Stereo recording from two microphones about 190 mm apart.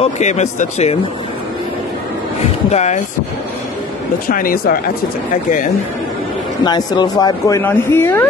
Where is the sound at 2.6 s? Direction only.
35° left (ahead or behind).